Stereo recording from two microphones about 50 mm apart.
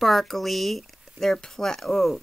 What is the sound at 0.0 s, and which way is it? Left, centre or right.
Speech, centre.